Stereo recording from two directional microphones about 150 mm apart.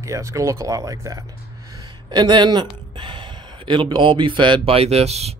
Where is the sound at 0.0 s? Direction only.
20° right (ahead or behind); by 5.3 s 45° right (ahead or behind).